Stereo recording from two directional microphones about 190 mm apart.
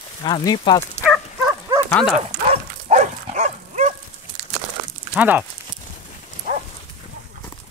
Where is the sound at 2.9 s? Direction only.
35° right (ahead or behind).